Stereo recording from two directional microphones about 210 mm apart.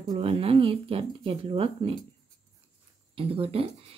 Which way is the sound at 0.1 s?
30° right (ahead or behind).